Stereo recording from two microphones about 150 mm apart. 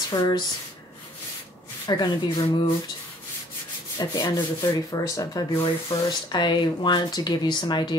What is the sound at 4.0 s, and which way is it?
Speech, 25° left (ahead or behind).